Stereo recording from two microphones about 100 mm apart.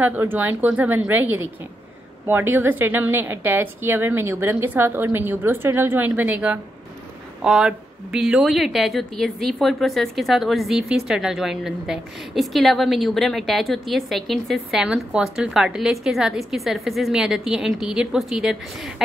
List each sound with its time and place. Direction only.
0.0 s a woman's voice: 20° right (ahead or behind)